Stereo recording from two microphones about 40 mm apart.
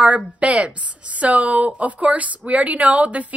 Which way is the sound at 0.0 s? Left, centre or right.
Right.